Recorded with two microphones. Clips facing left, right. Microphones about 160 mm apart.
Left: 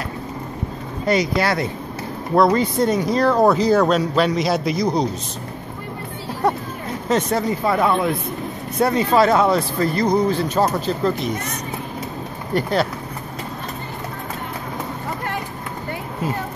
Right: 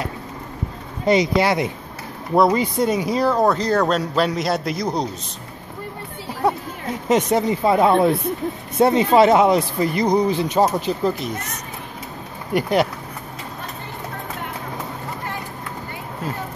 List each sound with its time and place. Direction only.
1.0 s speech: 20° right (ahead or behind); by 3.4 s 5° right (ahead or behind)
3.4 s a man's voice: 5° left (ahead or behind)
6.4 s a sound: 5° right (ahead or behind)
7.1 s speech: 15° right (ahead or behind)
12.5 s speech: 15° right (ahead or behind)